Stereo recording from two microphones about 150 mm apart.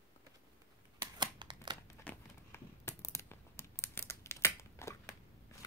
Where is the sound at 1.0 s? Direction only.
30° right (ahead or behind).